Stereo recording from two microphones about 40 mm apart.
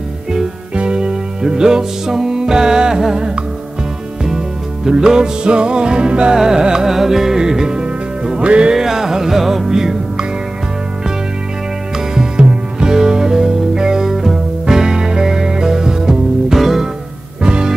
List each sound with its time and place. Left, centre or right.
0.7 s music: right
4.2 s music: centre
6.3 s music: centre
8.7 s music: centre
12.1 s music: centre
17.4 s music: right